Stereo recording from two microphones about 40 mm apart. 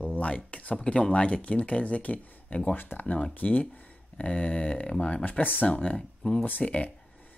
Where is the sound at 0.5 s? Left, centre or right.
Left.